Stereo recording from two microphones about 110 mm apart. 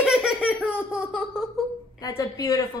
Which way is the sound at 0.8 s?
10° right (ahead or behind).